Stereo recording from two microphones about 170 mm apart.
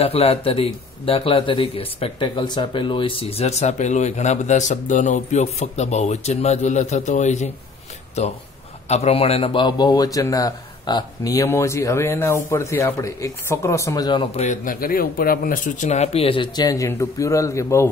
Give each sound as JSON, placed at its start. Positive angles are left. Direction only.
{"t": 0.0, "sound": "a man's voice", "side_deg": 35}
{"t": 14.3, "sound": "speech", "side_deg": 45}